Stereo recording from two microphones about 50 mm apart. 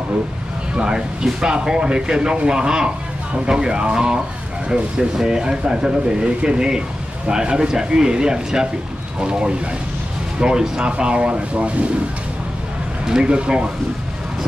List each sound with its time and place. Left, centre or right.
0.7 s speech: centre
13.0 s speech: centre